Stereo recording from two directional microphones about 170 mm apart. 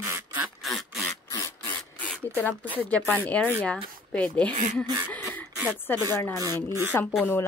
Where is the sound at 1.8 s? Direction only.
10° left (ahead or behind).